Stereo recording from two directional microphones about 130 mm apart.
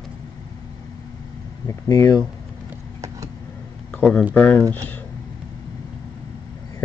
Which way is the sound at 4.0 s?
10° left (ahead or behind).